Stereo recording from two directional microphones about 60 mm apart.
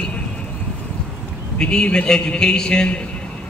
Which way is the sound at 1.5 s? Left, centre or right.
Centre.